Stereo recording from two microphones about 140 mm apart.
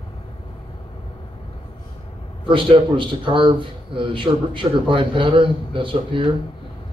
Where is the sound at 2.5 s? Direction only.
40° right (ahead or behind).